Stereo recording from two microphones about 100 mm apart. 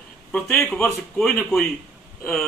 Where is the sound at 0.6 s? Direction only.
15° left (ahead or behind).